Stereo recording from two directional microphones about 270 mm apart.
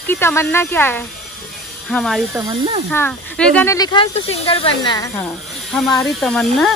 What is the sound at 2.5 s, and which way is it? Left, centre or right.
Speech, right.